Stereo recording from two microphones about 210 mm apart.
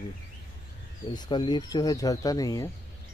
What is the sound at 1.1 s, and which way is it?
Speech, 20° left (ahead or behind).